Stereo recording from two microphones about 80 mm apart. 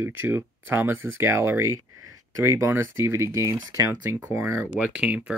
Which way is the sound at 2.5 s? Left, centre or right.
Right.